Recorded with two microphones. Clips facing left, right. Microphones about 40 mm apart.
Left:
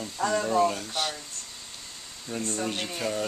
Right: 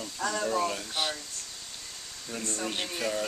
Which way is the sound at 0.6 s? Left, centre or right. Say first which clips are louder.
Left 5 dB; centre.